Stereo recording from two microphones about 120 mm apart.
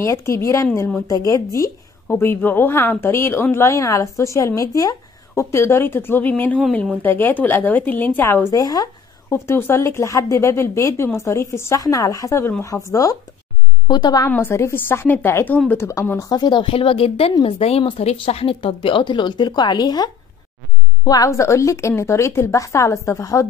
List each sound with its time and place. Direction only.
0.0 s a woman's voice: 25° left (ahead or behind)
9.3 s a woman's voice: 20° left (ahead or behind)
14.3 s a woman's voice: 20° left (ahead or behind)
16.3 s a woman's voice: 35° left (ahead or behind)